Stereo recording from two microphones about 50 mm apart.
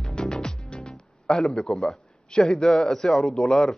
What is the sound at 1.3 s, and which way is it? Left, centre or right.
A man's voice, centre.